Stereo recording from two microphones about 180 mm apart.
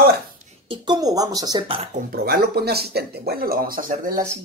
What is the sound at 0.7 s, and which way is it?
Speech, 25° right (ahead or behind).